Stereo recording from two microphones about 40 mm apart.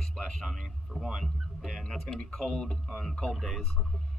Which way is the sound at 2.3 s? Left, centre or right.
Centre.